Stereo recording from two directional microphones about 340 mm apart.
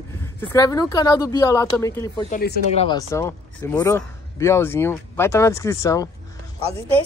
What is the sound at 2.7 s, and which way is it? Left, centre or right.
Speech, centre.